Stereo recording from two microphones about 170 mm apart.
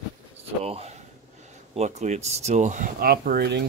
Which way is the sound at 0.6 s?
35° right (ahead or behind).